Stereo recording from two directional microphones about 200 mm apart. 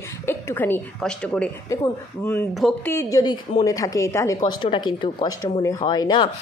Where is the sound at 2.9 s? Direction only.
15° left (ahead or behind).